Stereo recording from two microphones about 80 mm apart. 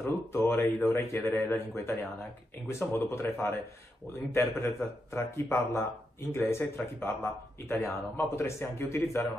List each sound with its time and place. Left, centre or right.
0.0 s a man's voice: left